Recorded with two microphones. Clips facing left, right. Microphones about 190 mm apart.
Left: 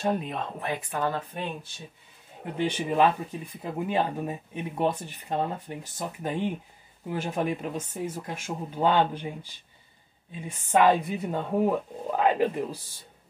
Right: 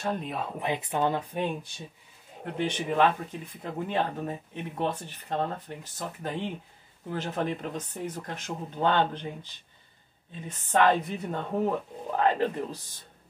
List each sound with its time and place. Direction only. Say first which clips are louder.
0.2 s speech: even; centre (ahead or behind)
0.6 s speech: right 4 dB; 20° right (ahead or behind)
2.4 s speech: left 2 dB; 10° left (ahead or behind)